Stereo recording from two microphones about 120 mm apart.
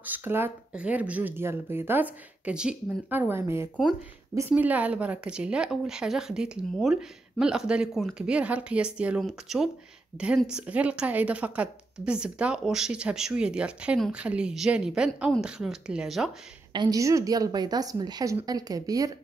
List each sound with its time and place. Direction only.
0.0 s speech: 15° right (ahead or behind)
16.7 s a woman's voice: 40° right (ahead or behind)